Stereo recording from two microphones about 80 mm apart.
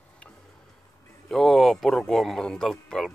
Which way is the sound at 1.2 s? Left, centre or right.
Centre.